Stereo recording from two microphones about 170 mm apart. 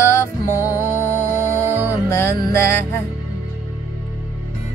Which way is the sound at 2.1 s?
15° left (ahead or behind).